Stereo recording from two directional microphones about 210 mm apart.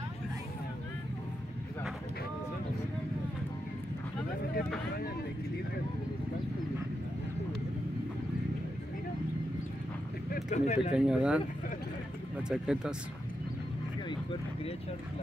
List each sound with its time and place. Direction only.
10.3 s speech: 35° left (ahead or behind)
10.9 s speech: 5° right (ahead or behind)
12.4 s speech: 5° right (ahead or behind)